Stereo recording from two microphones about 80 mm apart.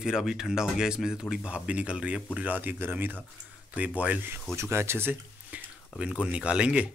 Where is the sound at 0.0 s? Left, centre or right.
Centre.